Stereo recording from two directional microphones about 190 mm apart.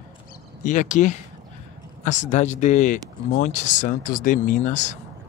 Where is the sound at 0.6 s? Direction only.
40° left (ahead or behind).